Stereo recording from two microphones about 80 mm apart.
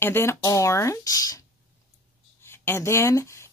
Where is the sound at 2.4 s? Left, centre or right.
Left.